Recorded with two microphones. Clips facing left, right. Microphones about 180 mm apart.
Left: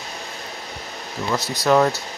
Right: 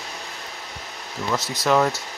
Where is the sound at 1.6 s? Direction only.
5° left (ahead or behind).